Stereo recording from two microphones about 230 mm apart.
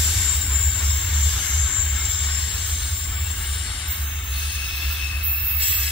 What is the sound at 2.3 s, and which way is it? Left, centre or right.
Train, left.